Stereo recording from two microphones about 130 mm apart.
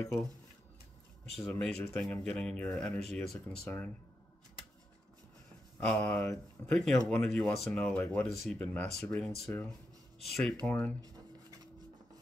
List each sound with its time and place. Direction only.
0.0 s speech: 5° left (ahead or behind)
1.5 s speech: 10° left (ahead or behind)
5.8 s speech: 10° left (ahead or behind)
10.7 s speech: 10° left (ahead or behind)
11.0 s rub: 30° right (ahead or behind)